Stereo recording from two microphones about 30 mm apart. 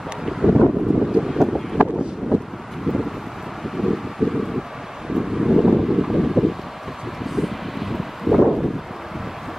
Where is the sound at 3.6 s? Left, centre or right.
Centre.